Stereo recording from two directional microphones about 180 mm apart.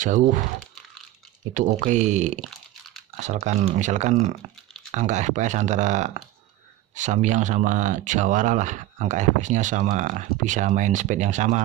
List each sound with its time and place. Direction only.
0.0 s speech: 45° right (ahead or behind)